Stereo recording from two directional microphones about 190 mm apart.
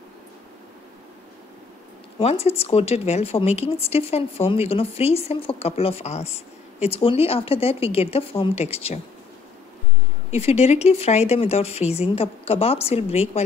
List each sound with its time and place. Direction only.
2.1 s speech: 30° left (ahead or behind)
10.3 s speech: 30° left (ahead or behind)